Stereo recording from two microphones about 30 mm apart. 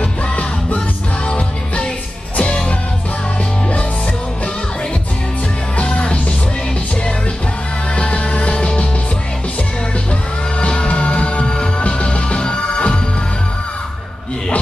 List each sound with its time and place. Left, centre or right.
2.3 s music: left
7.9 s music: left
10.7 s music: left
11.4 s music: left
11.8 s music: left